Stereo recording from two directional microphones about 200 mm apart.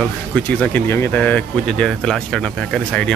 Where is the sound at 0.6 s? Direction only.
10° left (ahead or behind).